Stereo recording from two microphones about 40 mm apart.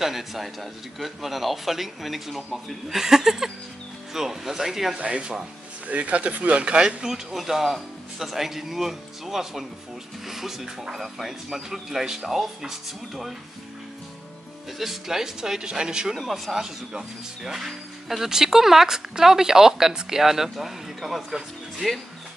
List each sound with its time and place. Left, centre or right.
0.0 s a man's voice: centre
4.9 s speech: right
6.6 s speech: right; by 13.3 s centre
14.8 s speech: centre
16.2 s a man's voice: centre